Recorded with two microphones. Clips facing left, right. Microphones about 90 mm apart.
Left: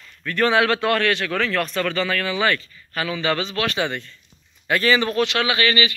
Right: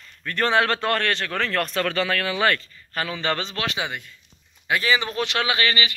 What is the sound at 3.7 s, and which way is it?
Speech, 15° right (ahead or behind).